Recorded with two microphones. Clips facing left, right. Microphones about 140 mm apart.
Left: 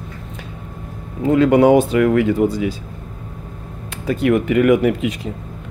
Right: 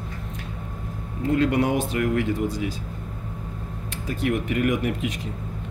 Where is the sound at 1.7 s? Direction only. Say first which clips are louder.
Left 10 dB; 90° left.